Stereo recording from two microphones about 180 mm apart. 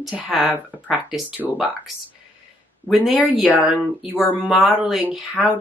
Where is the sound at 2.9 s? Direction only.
Centre (ahead or behind).